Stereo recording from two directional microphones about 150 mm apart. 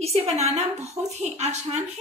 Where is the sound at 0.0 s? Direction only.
45° right (ahead or behind).